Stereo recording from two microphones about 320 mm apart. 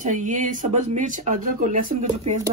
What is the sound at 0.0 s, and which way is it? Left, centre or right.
Speech, right.